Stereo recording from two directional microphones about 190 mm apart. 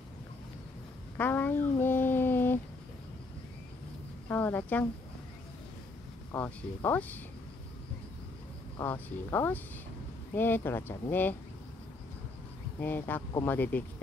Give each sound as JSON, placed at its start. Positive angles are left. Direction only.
{"t": 1.1, "sound": "a sound", "side_deg": 10}
{"t": 4.3, "sound": "speech", "side_deg": 10}
{"t": 6.3, "sound": "speech", "side_deg": 10}
{"t": 8.7, "sound": "speech", "side_deg": 10}
{"t": 12.8, "sound": "speech", "side_deg": 10}